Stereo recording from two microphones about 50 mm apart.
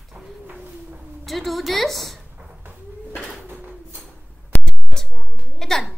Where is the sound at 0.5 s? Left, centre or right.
Right.